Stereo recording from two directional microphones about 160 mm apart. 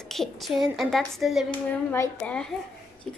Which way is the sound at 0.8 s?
Centre (ahead or behind).